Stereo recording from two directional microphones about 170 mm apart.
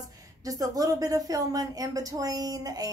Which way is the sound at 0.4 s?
20° right (ahead or behind).